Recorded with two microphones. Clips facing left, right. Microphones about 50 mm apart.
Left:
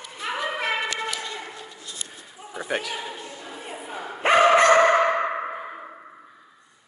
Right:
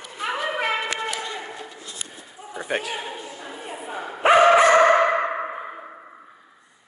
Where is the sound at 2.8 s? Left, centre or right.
Right.